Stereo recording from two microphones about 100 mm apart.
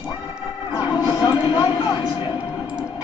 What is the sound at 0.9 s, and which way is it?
Speech, 50° left (ahead or behind).